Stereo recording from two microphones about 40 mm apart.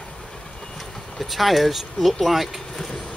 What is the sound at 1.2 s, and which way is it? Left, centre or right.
Speech, centre.